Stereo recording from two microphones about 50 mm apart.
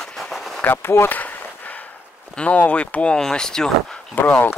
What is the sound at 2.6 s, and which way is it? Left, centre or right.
Speech, left.